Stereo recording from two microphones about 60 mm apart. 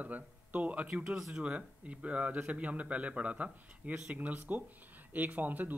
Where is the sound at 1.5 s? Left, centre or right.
Right.